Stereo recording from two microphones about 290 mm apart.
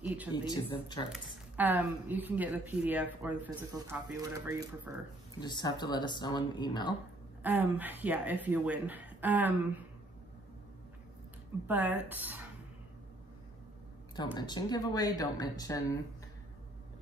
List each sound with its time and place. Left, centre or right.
0.0 s speech: centre
0.5 s speech: centre
1.1 s speech: centre
5.4 s speech: centre
7.4 s speech: centre
11.6 s speech: centre
14.1 s speech: centre